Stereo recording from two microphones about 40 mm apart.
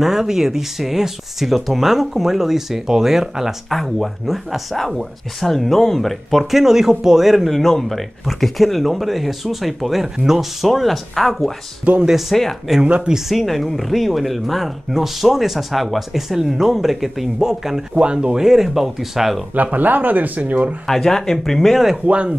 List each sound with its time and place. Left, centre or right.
0.0 s speech: centre
12.8 s speech: right
13.1 s speech: centre
17.9 s speech: right
18.4 s speech: centre
19.5 s speech: right
20.8 s speech: centre
21.6 s speech: centre
22.0 s speech: right